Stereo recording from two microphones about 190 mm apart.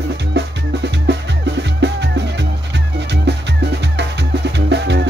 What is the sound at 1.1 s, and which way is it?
Music, 65° right (ahead or behind).